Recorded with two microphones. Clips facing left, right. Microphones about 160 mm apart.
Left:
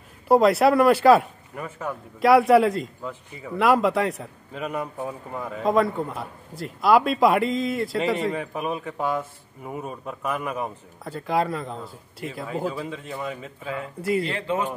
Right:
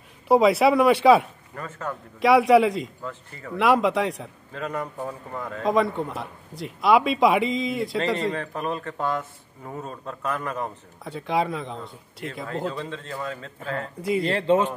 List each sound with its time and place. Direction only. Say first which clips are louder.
0.3 s a man's voice: even; centre (ahead or behind)
1.5 s a man's voice: left 1 dB; 10° left (ahead or behind)
2.1 s a man's voice: left 1 dB; centre (ahead or behind)
4.5 s a man's voice: left 1 dB; 15° left (ahead or behind)
11.1 s a man's voice: left 1 dB; centre (ahead or behind)
14.3 s speech: right 6 dB; 30° right (ahead or behind)